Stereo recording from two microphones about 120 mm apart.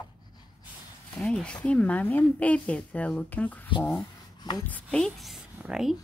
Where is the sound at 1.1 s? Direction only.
5° left (ahead or behind).